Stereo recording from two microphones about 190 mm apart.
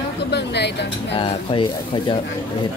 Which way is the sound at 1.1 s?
25° left (ahead or behind).